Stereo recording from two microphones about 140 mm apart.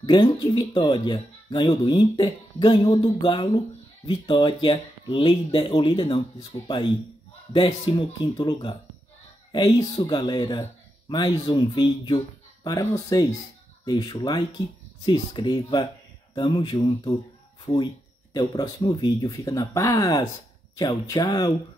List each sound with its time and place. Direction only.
0.0 s speech: 30° left (ahead or behind)
7.5 s speech: 35° left (ahead or behind)
18.3 s speech: 30° left (ahead or behind)